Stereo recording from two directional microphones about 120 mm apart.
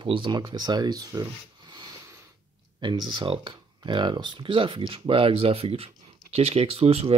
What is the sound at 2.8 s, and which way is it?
Speech, 40° right (ahead or behind).